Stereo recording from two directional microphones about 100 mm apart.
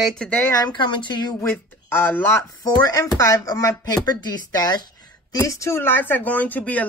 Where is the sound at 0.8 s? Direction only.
55° left (ahead or behind).